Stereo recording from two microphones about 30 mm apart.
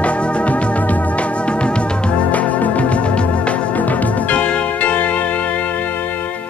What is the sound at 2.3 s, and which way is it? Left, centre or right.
Music, left.